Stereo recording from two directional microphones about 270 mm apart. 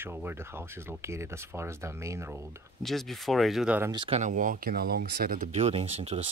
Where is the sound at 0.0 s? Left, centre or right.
Centre.